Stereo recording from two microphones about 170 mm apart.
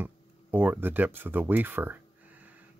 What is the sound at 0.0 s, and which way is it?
Speech, 10° right (ahead or behind).